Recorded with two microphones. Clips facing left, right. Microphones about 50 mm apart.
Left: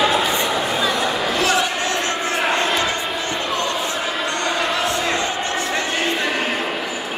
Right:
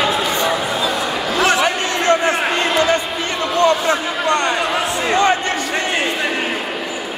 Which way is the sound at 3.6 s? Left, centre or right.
Right.